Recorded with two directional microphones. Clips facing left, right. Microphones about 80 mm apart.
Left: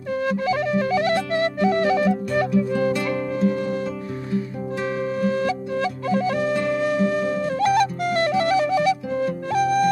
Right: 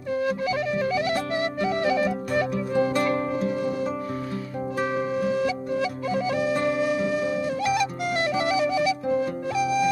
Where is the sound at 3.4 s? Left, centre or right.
Left.